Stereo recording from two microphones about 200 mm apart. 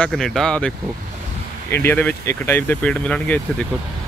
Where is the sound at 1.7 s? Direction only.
10° left (ahead or behind).